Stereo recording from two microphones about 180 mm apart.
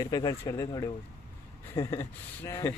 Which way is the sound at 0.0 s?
20° left (ahead or behind).